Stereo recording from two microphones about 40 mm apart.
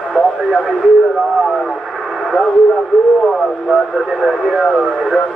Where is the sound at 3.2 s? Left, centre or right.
Centre.